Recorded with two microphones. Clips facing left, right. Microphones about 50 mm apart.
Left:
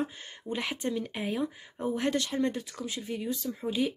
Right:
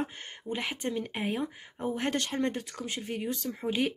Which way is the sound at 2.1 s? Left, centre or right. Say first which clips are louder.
Left 1 dB; right.